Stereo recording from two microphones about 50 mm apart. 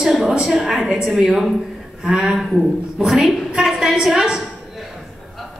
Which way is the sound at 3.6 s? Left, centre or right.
Centre.